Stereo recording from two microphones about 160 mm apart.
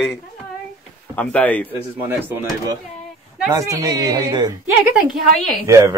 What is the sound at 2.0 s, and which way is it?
Speech, 10° right (ahead or behind).